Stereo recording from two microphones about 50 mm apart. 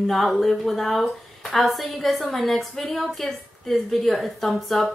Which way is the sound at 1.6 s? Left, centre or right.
Centre.